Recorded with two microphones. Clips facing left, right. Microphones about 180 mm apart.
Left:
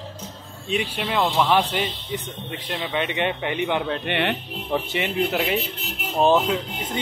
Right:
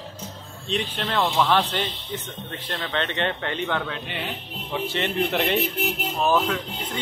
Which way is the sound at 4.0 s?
70° left (ahead or behind).